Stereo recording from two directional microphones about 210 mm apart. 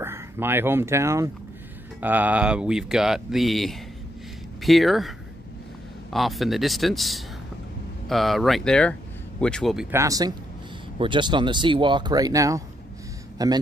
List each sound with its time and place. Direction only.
0.0 s speech: 10° right (ahead or behind)
9.8 s speech: 15° right (ahead or behind)